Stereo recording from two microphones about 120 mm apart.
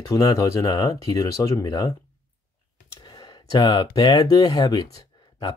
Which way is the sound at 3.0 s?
40° left (ahead or behind).